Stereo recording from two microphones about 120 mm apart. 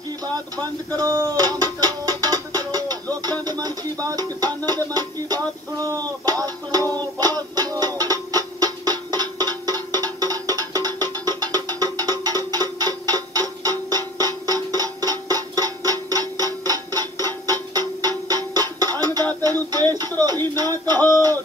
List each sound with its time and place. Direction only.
0.3 s speech: 30° right (ahead or behind)
5.9 s music: 30° right (ahead or behind)